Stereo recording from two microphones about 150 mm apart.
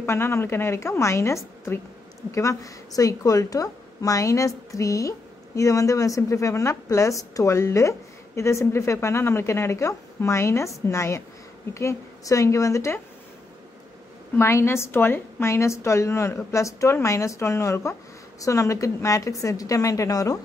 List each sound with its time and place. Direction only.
0.0 s a woman's voice: 20° left (ahead or behind)
14.3 s a woman's voice: 15° left (ahead or behind)